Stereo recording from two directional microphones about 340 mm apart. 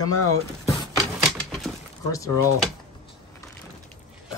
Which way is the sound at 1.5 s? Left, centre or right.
Centre.